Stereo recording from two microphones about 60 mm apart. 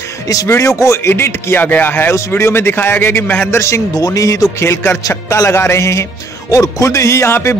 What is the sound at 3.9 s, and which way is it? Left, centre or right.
Speech, left.